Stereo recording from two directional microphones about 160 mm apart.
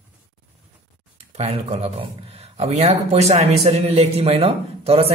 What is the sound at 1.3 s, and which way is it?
A man's voice, 40° right (ahead or behind).